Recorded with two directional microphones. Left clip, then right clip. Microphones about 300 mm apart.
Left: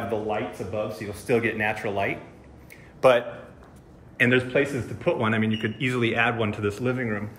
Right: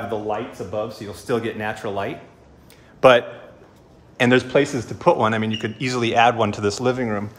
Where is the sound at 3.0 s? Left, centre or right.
Right.